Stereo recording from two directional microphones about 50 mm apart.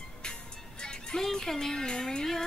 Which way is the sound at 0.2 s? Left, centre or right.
Centre.